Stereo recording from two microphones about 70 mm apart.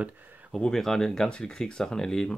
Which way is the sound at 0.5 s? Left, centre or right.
Centre.